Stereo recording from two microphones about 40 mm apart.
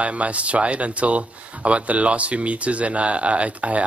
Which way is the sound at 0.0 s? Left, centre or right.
Right.